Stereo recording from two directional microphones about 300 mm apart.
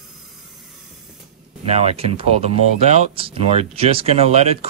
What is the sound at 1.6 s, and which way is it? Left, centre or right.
Speech, right.